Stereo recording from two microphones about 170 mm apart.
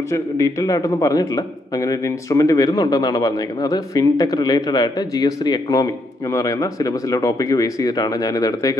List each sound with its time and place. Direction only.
0.1 s a man's voice: 20° left (ahead or behind)